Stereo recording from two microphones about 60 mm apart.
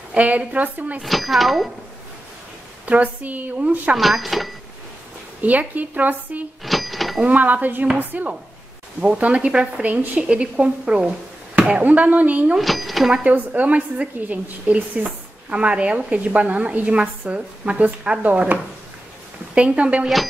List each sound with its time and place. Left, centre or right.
0.1 s a woman's voice: right
1.0 s speech: centre
2.8 s a woman's voice: right
3.9 s speech: centre
5.4 s a woman's voice: right
6.6 s a sound: centre
7.2 s a woman's voice: right
9.2 s a woman's voice: centre
12.5 s speech: centre
13.1 s a woman's voice: right